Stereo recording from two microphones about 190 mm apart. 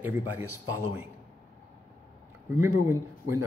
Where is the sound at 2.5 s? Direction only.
15° right (ahead or behind).